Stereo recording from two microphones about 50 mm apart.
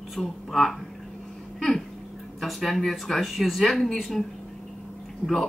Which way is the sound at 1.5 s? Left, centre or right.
Centre.